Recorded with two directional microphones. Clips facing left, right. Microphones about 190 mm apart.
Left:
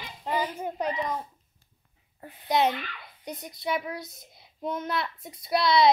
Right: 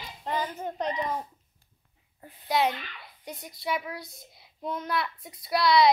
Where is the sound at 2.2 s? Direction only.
65° left (ahead or behind).